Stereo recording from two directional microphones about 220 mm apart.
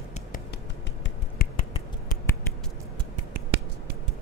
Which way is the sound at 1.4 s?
30° left (ahead or behind).